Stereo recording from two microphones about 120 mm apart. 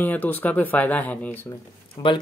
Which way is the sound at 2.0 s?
35° left (ahead or behind).